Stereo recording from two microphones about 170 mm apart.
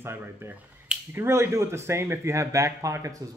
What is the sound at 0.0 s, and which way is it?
Speech, 15° right (ahead or behind).